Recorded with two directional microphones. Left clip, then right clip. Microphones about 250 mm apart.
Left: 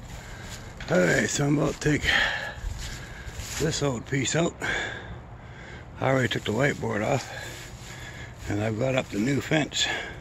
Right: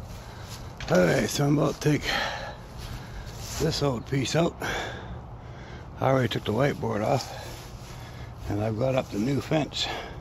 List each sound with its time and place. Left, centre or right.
0.8 s speech: centre
3.5 s speech: centre